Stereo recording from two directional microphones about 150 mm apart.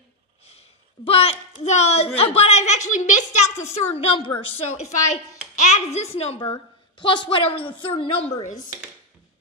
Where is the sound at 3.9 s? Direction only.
35° left (ahead or behind).